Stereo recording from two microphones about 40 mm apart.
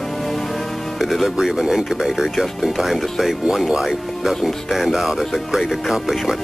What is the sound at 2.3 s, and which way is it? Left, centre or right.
Speech, centre.